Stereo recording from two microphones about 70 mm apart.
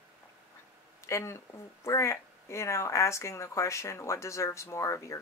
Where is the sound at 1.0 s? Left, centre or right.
Left.